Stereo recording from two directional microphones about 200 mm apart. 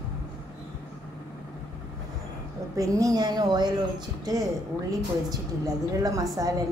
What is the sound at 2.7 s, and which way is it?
A woman's voice, 15° right (ahead or behind).